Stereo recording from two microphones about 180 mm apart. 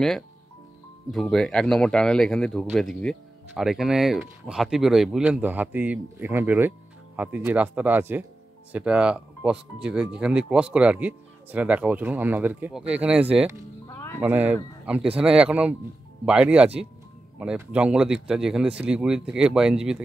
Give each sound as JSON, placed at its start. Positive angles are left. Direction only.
{"t": 1.1, "sound": "speech", "side_deg": 0}
{"t": 13.9, "sound": "music", "side_deg": 15}
{"t": 14.2, "sound": "speech", "side_deg": -10}